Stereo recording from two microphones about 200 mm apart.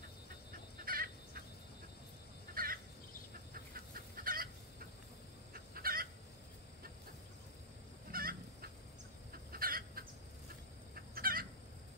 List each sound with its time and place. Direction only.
0.8 s fowl: 45° right (ahead or behind)
2.5 s crow: 45° right (ahead or behind)
3.5 s fowl: 45° right (ahead or behind)
5.5 s chicken: 45° right (ahead or behind)
8.1 s fowl: 50° right (ahead or behind)
9.3 s chicken: 45° right (ahead or behind)